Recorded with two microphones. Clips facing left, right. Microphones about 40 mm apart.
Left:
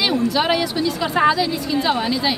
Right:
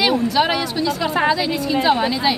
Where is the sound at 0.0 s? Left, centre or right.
Centre.